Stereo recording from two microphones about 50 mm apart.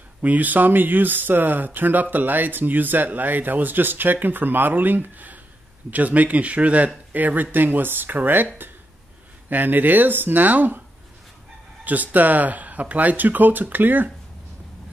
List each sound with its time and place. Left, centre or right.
0.2 s speech: right
9.5 s speech: right
11.8 s speech: right